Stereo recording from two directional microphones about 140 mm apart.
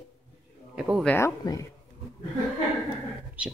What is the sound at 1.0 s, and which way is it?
Speech, 10° left (ahead or behind).